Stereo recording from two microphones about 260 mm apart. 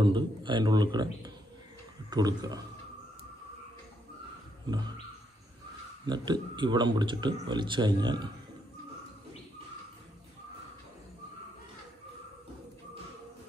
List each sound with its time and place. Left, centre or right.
0.0 s a man's voice: centre
4.6 s a man's voice: centre
6.0 s a man's voice: centre